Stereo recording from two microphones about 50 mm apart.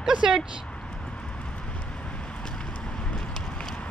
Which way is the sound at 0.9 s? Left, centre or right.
Left.